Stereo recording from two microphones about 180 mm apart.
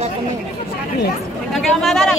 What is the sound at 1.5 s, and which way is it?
Speech, centre (ahead or behind).